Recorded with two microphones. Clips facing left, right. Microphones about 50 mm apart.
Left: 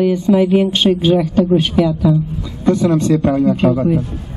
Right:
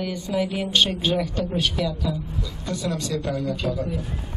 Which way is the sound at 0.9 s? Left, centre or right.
Centre.